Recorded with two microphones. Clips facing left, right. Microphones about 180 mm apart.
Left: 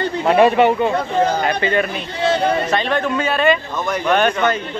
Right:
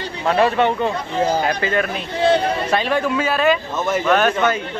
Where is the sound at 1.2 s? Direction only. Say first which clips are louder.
Right 2 dB; 5° right (ahead or behind).